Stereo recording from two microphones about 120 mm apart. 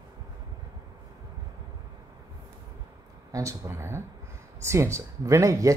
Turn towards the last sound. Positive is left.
turn(degrees=-25)  # may be behind; listen again after turning